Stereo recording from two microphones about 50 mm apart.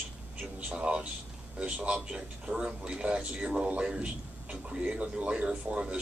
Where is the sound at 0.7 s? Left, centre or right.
Right.